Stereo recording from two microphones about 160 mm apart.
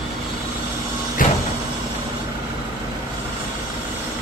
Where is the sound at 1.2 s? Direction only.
60° left (ahead or behind).